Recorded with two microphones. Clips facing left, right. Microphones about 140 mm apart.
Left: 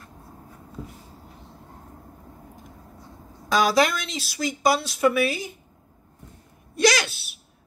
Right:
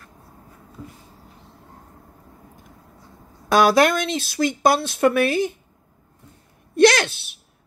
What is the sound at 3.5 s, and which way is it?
Speech, 60° right (ahead or behind).